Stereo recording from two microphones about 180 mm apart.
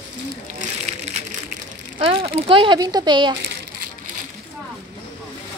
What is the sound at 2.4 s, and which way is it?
Speech, 30° right (ahead or behind).